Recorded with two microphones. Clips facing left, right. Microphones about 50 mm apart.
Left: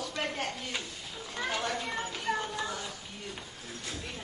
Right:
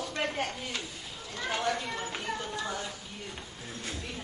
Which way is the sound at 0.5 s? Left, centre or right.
Centre.